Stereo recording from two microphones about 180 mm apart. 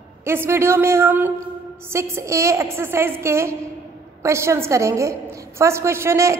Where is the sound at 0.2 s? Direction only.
15° right (ahead or behind).